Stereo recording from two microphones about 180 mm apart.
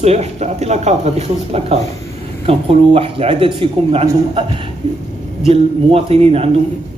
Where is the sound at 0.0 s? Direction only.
35° right (ahead or behind).